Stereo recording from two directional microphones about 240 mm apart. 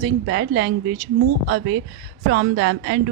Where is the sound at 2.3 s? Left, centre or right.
Right.